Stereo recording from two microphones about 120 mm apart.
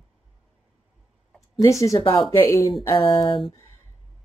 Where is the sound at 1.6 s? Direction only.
25° left (ahead or behind).